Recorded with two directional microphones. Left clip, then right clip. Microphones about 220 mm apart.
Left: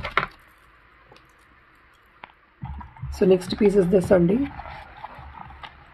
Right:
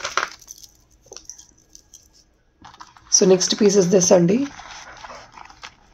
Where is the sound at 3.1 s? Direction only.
5° right (ahead or behind).